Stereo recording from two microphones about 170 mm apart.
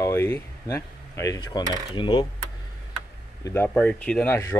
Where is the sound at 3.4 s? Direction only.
10° left (ahead or behind).